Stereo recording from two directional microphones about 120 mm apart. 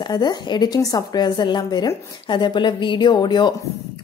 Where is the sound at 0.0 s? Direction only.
35° left (ahead or behind).